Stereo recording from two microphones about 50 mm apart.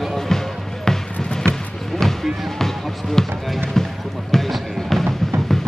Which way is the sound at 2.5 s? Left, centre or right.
Centre.